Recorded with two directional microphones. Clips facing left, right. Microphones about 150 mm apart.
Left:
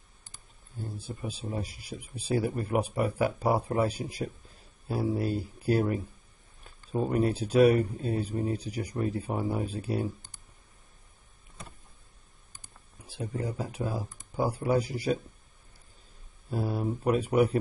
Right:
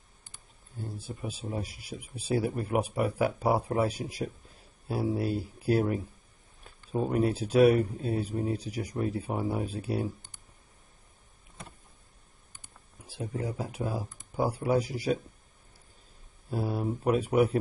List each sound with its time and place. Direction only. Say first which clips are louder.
0.9 s speech: left 1 dB; 5° right (ahead or behind)
13.2 s speech: even; 5° right (ahead or behind)
16.4 s speech: even; centre (ahead or behind)